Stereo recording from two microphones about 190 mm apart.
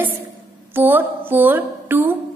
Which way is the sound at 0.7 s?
10° right (ahead or behind).